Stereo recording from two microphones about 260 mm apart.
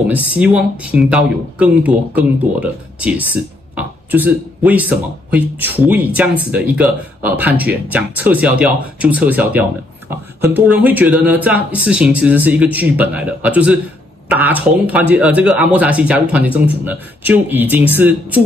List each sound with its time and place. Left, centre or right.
0.1 s speech: centre